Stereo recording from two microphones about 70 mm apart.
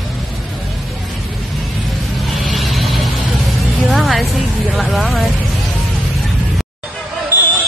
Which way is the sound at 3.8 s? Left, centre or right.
Centre.